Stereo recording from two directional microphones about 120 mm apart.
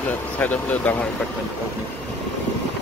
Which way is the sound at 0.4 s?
15° left (ahead or behind).